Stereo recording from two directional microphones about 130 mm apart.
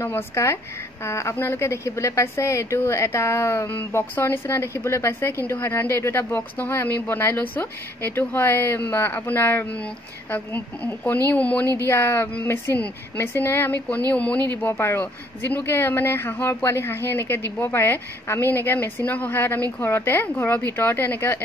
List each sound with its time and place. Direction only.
0.0 s a woman's voice: 20° left (ahead or behind)